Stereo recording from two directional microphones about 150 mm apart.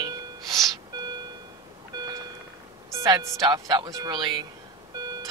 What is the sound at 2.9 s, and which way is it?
Speech, 20° right (ahead or behind).